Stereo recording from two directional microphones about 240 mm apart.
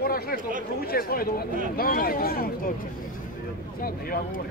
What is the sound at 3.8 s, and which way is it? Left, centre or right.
Speech, left.